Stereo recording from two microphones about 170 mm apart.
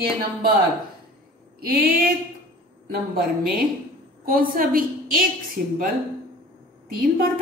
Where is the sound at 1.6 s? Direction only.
60° right (ahead or behind).